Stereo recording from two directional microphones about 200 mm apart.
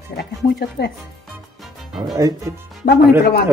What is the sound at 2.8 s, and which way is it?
Speech, 50° left (ahead or behind).